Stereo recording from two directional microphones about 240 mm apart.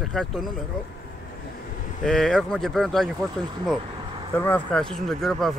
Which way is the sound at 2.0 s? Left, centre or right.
Centre.